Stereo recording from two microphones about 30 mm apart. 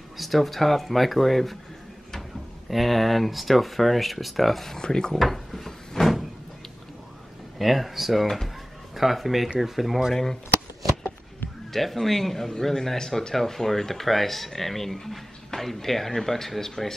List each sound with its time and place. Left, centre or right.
0.2 s speech: centre
2.7 s speech: centre
4.7 s speech: left
5.1 s cupboard open or close: centre
7.5 s speech: centre
11.7 s speech: centre